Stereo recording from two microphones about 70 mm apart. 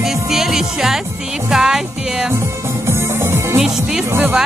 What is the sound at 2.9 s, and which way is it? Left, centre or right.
Music, right.